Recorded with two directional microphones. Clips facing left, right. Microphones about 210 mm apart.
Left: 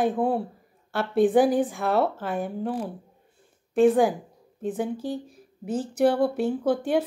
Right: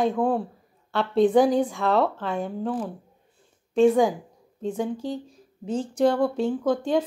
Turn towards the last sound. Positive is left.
turn(degrees=10)  # may be behind; listen again after turning